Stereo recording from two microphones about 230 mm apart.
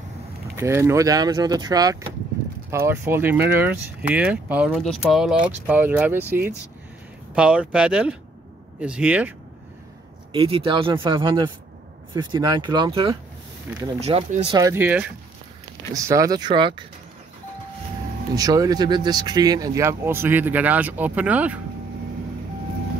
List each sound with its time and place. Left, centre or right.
0.6 s speech: centre
10.3 s speech: right
18.3 s speech: centre